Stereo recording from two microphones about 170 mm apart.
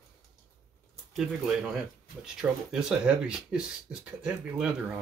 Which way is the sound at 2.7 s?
5° right (ahead or behind).